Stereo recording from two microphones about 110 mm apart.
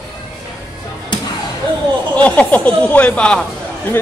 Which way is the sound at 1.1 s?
45° left (ahead or behind).